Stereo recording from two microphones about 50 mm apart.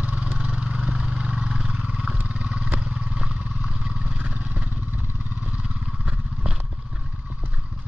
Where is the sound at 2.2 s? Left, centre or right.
Right.